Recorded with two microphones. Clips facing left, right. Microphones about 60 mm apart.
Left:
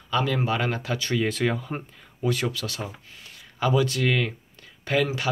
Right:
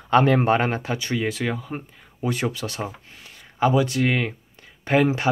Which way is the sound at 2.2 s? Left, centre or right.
Right.